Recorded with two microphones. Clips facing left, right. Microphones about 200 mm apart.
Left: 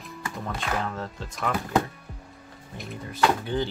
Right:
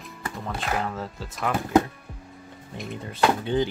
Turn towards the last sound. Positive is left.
turn(degrees=-20)  # may be behind; listen again after turning